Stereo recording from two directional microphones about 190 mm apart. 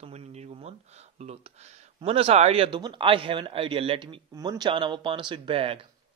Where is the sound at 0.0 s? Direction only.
35° right (ahead or behind).